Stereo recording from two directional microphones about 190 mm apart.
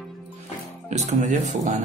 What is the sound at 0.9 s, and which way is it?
Speech, 40° right (ahead or behind).